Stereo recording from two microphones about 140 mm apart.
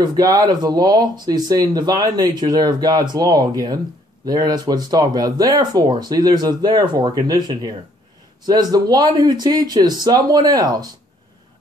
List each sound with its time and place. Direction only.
0.0 s speech: 30° right (ahead or behind)